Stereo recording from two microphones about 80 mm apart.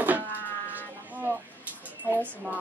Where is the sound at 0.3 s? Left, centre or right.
Left.